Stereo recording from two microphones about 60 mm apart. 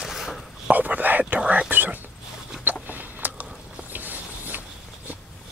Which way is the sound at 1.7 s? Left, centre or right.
Right.